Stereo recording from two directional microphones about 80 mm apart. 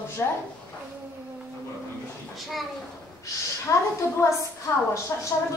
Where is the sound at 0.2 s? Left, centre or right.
Left.